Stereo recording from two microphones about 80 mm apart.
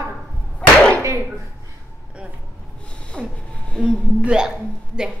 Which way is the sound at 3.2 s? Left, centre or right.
Centre.